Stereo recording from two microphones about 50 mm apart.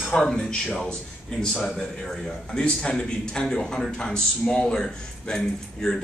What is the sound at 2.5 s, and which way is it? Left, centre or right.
A man's voice, centre.